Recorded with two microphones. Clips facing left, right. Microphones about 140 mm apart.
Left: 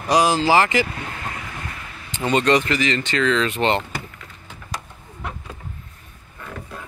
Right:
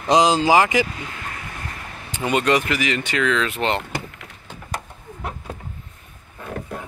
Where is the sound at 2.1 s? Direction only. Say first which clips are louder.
Left 1 dB; 5° right (ahead or behind).